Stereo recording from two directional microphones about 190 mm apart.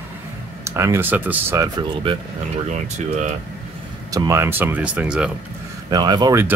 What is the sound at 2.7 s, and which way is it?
Speech, 40° right (ahead or behind).